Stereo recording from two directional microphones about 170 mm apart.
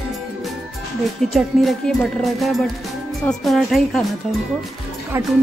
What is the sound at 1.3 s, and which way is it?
Speech, centre (ahead or behind).